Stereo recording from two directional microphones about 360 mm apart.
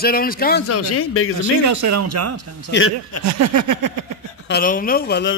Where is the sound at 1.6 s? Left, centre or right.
Right.